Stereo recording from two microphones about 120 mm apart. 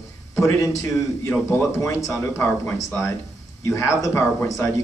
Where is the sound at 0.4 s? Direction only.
25° left (ahead or behind).